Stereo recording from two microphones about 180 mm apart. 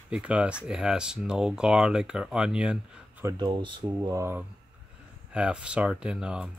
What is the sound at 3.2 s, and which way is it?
Speech, 25° right (ahead or behind).